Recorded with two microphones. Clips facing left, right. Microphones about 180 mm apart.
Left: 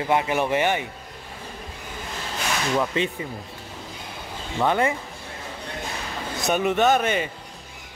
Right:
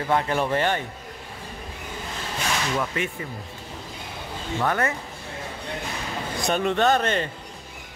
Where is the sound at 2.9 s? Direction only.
25° left (ahead or behind).